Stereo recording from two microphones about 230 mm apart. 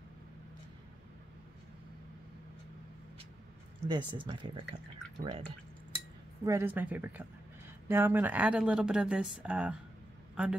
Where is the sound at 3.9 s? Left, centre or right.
Centre.